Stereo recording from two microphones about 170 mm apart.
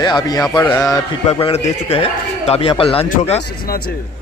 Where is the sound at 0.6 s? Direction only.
10° left (ahead or behind).